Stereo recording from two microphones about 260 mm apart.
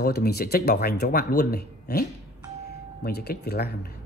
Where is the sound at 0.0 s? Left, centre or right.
Left.